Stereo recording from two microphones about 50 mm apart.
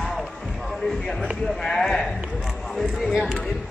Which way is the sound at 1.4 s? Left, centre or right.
Centre.